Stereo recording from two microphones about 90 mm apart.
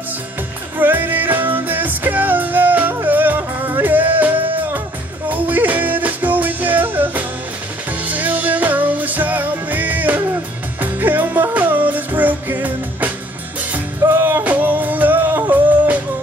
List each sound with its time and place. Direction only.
0.7 s music: 20° right (ahead or behind)